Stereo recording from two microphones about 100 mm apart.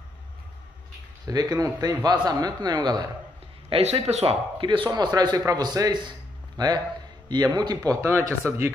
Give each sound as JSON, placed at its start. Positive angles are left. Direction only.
{"t": 1.2, "sound": "speech", "side_deg": -40}
{"t": 3.7, "sound": "speech", "side_deg": -80}
{"t": 4.6, "sound": "a man's voice", "side_deg": -55}
{"t": 8.2, "sound": "speech", "side_deg": -30}